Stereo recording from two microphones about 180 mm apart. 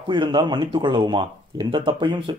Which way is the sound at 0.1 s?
25° right (ahead or behind).